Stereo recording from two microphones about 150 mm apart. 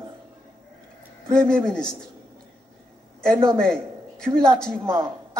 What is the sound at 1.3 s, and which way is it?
Speech, 5° left (ahead or behind).